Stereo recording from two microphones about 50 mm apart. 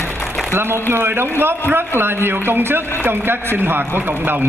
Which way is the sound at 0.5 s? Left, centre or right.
Right.